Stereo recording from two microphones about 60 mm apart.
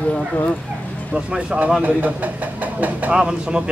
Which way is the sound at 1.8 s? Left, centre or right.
Right.